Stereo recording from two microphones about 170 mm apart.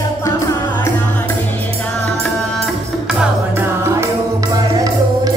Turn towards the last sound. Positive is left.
turn(degrees=-5)  # may be behind; listen again after turning